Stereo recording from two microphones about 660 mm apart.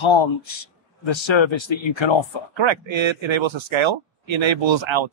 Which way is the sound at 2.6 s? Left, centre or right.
Right.